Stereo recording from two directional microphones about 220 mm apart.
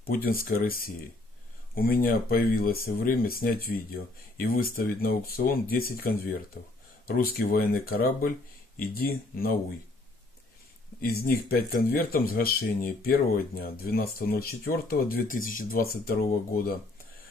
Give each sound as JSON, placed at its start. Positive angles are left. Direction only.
{"t": 0.0, "sound": "speech", "side_deg": 40}
{"t": 11.0, "sound": "speech", "side_deg": 45}